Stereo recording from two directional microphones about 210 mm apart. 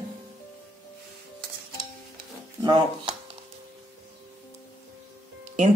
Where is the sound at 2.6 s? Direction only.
20° right (ahead or behind).